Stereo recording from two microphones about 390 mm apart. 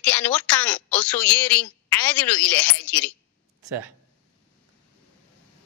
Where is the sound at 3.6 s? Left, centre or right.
Right.